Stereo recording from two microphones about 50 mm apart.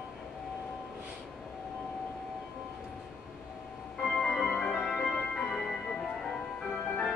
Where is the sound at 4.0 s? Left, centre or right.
Centre.